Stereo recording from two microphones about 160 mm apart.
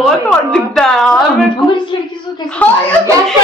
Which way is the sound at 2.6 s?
10° left (ahead or behind).